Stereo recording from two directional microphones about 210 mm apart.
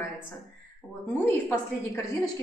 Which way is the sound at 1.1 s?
10° left (ahead or behind).